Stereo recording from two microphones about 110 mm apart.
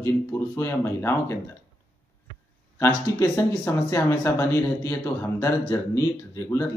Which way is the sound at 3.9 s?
25° left (ahead or behind).